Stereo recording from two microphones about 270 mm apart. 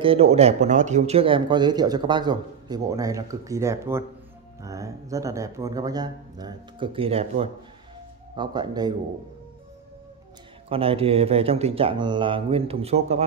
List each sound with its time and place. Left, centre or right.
0.0 s speech: right
10.7 s speech: right